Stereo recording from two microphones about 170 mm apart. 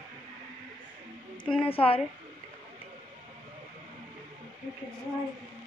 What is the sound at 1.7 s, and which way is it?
Speech, 35° left (ahead or behind).